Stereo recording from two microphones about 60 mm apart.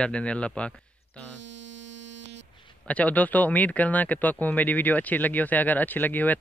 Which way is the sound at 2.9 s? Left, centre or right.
Left.